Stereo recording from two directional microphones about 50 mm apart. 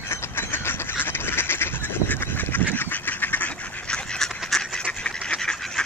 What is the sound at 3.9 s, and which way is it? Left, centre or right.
Duck, centre.